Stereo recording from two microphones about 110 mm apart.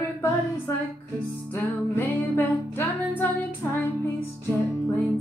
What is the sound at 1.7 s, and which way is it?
Music, 20° left (ahead or behind).